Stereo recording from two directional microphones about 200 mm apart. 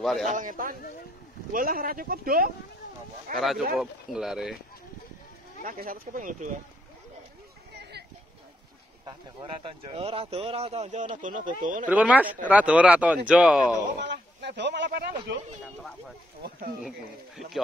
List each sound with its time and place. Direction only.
0.3 s speech: 40° right (ahead or behind)
3.3 s speech: centre (ahead or behind)
5.6 s speech: 40° right (ahead or behind)
9.0 s speech: 25° right (ahead or behind); by 11.9 s 40° right (ahead or behind)
11.9 s speech: 5° right (ahead or behind)
14.0 s speech: 55° right (ahead or behind)